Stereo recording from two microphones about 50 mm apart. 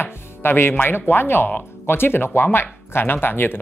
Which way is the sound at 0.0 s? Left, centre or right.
Left.